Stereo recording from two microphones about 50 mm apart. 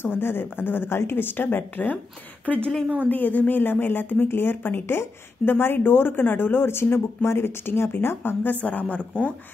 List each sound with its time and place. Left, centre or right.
0.0 s a woman's voice: left
2.4 s a woman's voice: left
8.5 s speech: left